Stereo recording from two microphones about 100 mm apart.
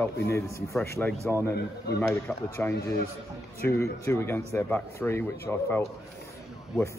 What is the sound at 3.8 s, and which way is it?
Speech, 25° left (ahead or behind).